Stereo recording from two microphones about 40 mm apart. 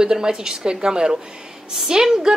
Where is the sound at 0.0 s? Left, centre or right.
Centre.